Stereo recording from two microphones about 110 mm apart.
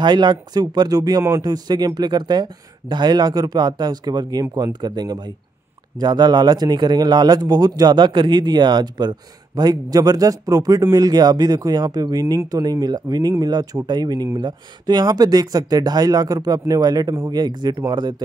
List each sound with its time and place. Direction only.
0.0 s speech: 40° right (ahead or behind)